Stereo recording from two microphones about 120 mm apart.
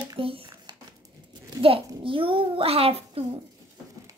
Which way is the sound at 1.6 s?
50° right (ahead or behind).